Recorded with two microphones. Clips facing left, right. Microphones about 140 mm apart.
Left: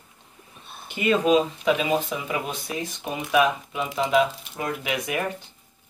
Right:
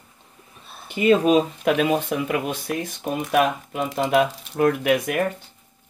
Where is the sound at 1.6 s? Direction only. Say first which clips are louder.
Right 2 dB; 60° right (ahead or behind).